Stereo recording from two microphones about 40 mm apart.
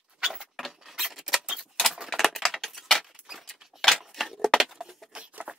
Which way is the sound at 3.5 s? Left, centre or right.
Centre.